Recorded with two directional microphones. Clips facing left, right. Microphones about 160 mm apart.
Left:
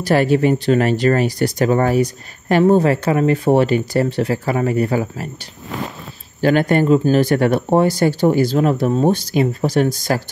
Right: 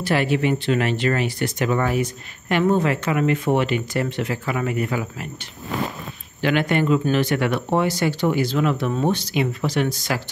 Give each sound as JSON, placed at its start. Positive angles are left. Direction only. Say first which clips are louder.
{"t": 0.0, "sound": "speech", "louder": "left 6 dB", "side_deg": 40}
{"t": 6.4, "sound": "speech", "louder": "left 5 dB", "side_deg": 40}